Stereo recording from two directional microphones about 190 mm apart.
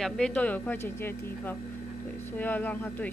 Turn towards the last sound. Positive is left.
turn(degrees=10)  # may be behind; listen again after turning